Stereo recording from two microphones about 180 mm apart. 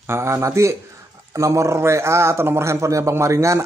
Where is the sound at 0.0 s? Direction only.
15° right (ahead or behind).